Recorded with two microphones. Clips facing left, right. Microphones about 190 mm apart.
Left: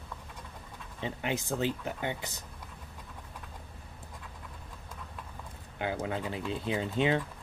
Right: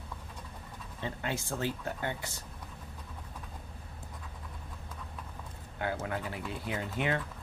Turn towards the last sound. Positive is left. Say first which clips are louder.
# left 4 dB
turn(degrees=20)  # may be behind; listen again after turning